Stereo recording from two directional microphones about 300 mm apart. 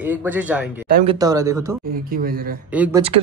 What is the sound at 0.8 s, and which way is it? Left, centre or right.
Speech, right.